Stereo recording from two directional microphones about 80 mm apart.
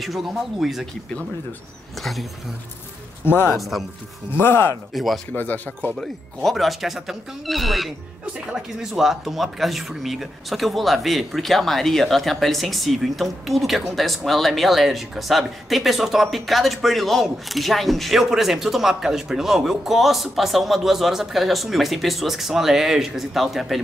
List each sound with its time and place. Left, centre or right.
0.0 s speech: centre
3.3 s speech: left
3.5 s speech: centre
4.4 s speech: left
4.9 s speech: centre
5.3 s speech: left
5.9 s speech: centre